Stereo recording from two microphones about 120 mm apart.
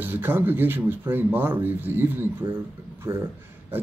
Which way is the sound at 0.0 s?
15° right (ahead or behind).